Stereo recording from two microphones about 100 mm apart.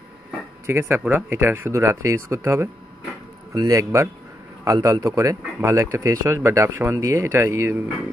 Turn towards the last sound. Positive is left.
turn(degrees=-25)  # may be behind; listen again after turning